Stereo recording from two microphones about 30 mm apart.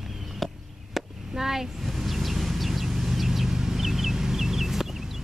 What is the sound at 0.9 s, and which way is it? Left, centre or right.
Chop, centre.